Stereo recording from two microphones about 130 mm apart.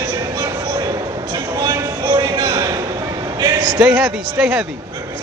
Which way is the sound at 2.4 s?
30° right (ahead or behind).